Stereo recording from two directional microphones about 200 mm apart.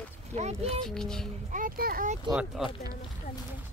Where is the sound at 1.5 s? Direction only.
45° right (ahead or behind).